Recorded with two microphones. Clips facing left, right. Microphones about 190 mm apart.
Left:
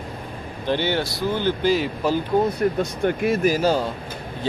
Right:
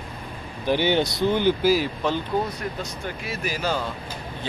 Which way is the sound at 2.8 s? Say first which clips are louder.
Left 11 dB; 55° left (ahead or behind).